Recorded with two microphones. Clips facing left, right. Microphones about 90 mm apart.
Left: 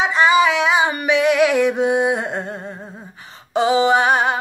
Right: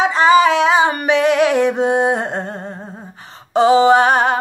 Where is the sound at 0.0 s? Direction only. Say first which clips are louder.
Right 3 dB; 35° right (ahead or behind).